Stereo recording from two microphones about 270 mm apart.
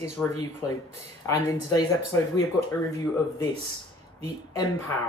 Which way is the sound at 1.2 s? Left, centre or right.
Centre.